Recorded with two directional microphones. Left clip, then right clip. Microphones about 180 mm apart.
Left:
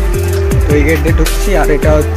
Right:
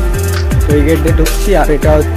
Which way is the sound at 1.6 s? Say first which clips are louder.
Left 2 dB; 20° right (ahead or behind).